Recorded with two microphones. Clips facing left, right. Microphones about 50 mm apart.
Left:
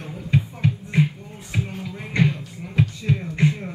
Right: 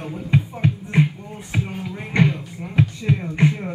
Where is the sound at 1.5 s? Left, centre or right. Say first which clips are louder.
Right 2 dB; centre.